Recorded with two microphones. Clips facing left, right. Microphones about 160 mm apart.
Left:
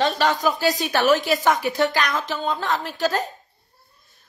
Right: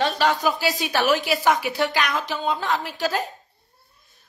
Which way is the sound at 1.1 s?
45° left (ahead or behind).